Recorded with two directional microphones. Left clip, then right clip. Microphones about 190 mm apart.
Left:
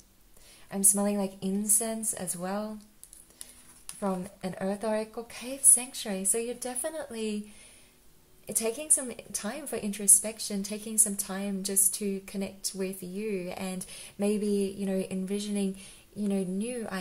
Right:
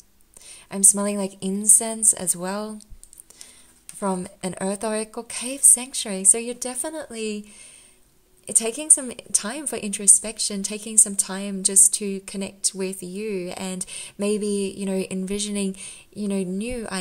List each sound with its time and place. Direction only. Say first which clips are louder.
0.5 s a woman's voice: right 9 dB; 40° right (ahead or behind)
4.0 s a woman's voice: right 6 dB; 45° right (ahead or behind)
8.5 s a woman's voice: right 7 dB; 35° right (ahead or behind)